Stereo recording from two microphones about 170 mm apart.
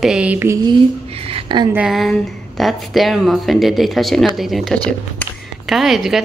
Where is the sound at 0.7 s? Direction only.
35° right (ahead or behind).